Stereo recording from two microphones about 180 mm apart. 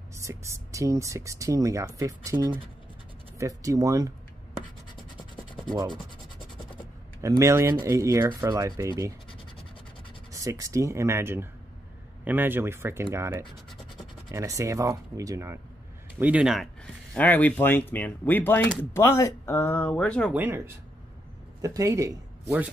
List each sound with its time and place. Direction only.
0.1 s speech: 15° right (ahead or behind)
7.2 s speech: 15° right (ahead or behind)
10.3 s speech: 20° right (ahead or behind)
14.3 s speech: 15° right (ahead or behind)
16.2 s speech: 5° right (ahead or behind)
20.3 s speech: 15° right (ahead or behind)